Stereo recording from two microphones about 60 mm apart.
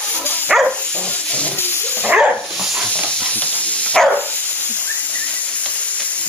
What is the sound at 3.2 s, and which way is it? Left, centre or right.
Hiss, left.